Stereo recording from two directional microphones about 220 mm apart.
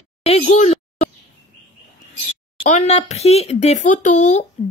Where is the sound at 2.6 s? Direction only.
30° left (ahead or behind).